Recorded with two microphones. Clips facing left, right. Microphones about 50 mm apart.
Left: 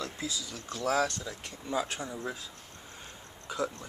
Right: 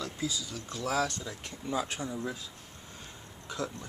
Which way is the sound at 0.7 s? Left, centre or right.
Centre.